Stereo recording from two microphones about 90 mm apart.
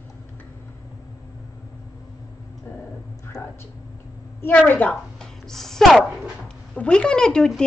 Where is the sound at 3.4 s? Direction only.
25° left (ahead or behind).